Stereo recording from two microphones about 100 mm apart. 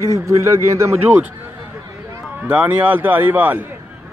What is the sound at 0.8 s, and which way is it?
Speech, 25° right (ahead or behind).